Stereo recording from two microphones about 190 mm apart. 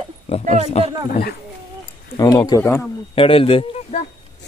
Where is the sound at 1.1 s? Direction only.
50° left (ahead or behind).